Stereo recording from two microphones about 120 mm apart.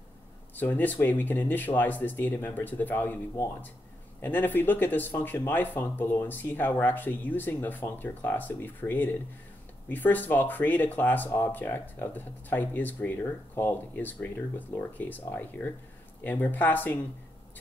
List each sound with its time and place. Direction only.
0.6 s speech: 15° left (ahead or behind)